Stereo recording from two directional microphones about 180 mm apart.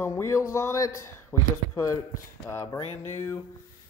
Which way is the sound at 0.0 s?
15° left (ahead or behind).